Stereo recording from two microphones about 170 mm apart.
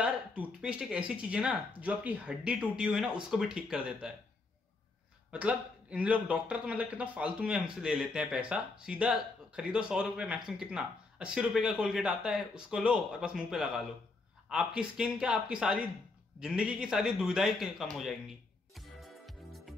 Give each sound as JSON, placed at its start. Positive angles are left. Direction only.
{"t": 0.0, "sound": "speech", "side_deg": -5}
{"t": 5.3, "sound": "a man's voice", "side_deg": -5}
{"t": 18.8, "sound": "music", "side_deg": 0}